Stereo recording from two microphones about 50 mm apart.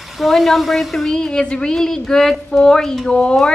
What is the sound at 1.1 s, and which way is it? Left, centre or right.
A woman's voice, centre.